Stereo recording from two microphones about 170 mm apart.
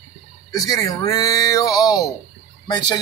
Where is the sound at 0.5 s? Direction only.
20° left (ahead or behind).